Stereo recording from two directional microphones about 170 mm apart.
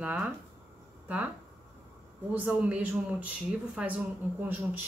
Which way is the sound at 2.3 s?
10° right (ahead or behind).